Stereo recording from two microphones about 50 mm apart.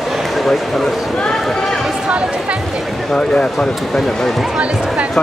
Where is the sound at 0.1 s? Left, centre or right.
Centre.